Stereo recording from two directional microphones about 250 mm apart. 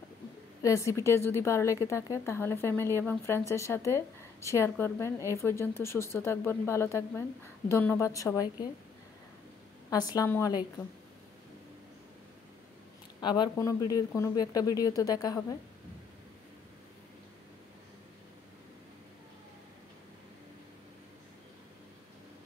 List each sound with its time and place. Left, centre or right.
0.6 s a woman's voice: centre
9.8 s a woman's voice: centre
13.2 s a woman's voice: centre